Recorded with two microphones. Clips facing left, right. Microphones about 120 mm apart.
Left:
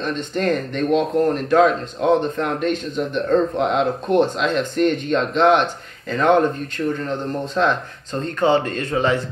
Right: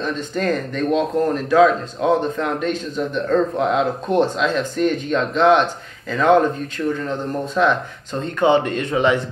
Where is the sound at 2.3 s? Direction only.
5° left (ahead or behind).